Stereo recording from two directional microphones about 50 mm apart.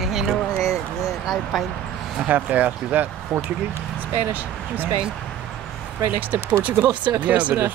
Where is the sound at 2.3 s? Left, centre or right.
Right.